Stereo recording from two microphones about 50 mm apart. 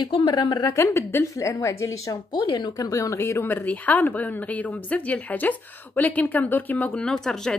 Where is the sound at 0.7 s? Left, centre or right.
Left.